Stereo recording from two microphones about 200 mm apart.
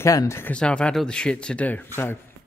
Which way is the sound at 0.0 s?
15° left (ahead or behind).